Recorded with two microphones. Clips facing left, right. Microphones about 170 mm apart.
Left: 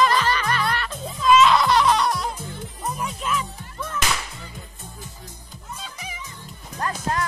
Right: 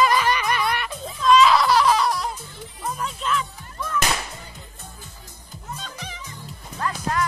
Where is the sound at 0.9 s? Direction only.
5° left (ahead or behind).